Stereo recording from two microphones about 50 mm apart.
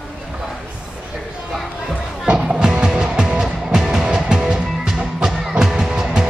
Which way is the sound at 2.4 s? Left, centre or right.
Centre.